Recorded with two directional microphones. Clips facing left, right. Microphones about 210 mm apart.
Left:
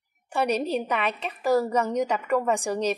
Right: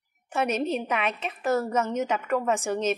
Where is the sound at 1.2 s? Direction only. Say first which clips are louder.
Left 6 dB; centre (ahead or behind).